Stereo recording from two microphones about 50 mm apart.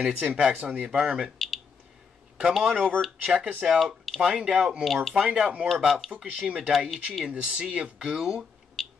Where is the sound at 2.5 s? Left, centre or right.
Centre.